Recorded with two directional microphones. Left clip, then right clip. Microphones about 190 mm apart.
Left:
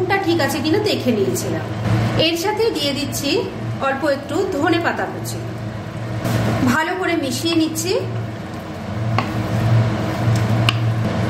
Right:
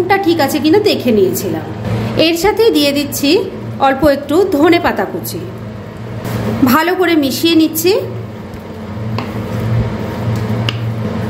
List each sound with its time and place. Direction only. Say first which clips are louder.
0.1 s a woman's voice: right 7 dB; 40° right (ahead or behind)
6.7 s a woman's voice: right 8 dB; 50° right (ahead or behind)